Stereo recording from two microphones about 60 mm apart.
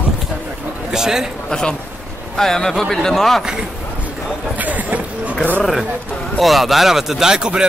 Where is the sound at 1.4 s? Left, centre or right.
Centre.